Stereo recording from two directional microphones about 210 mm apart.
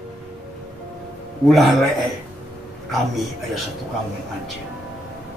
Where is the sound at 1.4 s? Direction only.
Centre (ahead or behind).